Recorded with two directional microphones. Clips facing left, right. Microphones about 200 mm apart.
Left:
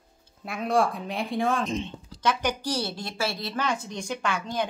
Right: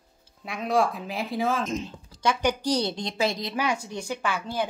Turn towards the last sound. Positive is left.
turn(degrees=-5)  # may be behind; listen again after turning